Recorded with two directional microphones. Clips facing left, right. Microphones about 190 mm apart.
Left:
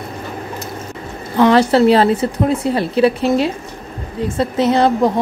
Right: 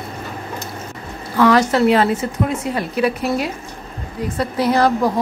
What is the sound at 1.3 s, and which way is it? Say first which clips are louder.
A woman's voice: left 3 dB; 30° left (ahead or behind).